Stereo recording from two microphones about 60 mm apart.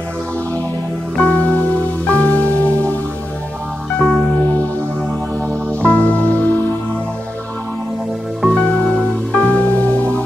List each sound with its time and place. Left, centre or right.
1.1 s music: centre
4.0 s music: centre
4.4 s music: left
5.7 s music: left
8.5 s music: centre